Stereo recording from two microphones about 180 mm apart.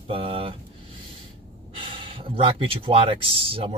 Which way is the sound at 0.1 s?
30° right (ahead or behind).